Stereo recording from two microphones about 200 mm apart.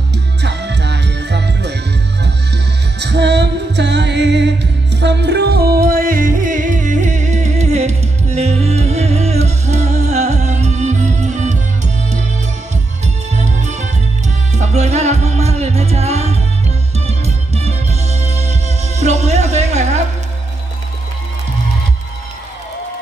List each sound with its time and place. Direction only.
0.4 s music: 60° right (ahead or behind)
3.0 s music: 60° right (ahead or behind); by 20.0 s 35° right (ahead or behind)